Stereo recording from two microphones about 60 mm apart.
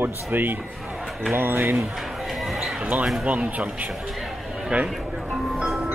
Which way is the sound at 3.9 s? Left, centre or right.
Centre.